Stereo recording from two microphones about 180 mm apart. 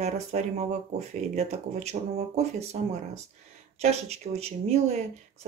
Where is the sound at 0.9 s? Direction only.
35° right (ahead or behind).